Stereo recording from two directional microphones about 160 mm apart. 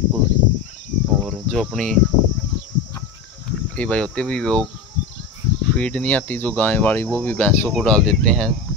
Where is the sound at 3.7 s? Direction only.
10° left (ahead or behind).